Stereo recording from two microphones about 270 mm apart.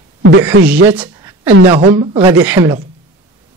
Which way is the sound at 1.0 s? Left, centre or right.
Centre.